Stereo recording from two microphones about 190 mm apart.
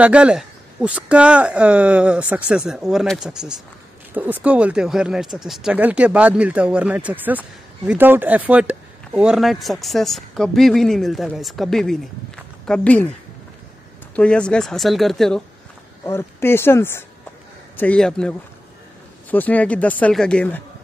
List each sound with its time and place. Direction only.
0.0 s speech: 5° right (ahead or behind)
14.1 s speech: 5° left (ahead or behind)
16.1 s speech: 15° left (ahead or behind)
19.3 s speech: 10° left (ahead or behind)